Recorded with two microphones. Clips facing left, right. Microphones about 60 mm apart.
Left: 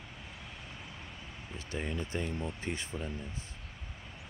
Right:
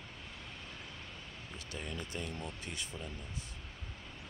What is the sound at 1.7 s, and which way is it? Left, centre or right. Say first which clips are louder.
Speech: left 6 dB; left.